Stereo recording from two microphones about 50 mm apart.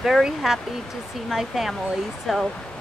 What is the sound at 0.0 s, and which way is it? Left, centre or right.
Speech, centre.